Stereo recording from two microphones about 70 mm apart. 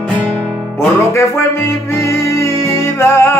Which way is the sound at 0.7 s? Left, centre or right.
Left.